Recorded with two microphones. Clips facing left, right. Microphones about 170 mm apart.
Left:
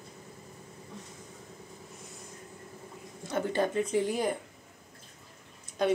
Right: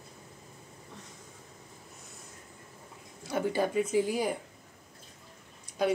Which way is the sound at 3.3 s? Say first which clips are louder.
Even; 10° right (ahead or behind).